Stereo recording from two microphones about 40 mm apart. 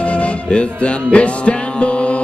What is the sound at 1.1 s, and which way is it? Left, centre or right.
Music, left.